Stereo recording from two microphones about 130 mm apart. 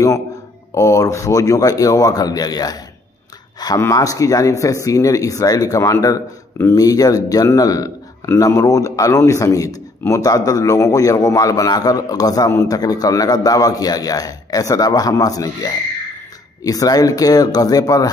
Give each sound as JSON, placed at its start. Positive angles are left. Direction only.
{"t": 0.7, "sound": "a man's voice", "side_deg": 25}